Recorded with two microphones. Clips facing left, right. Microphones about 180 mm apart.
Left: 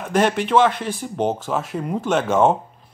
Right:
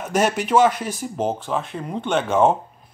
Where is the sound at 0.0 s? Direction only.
5° right (ahead or behind).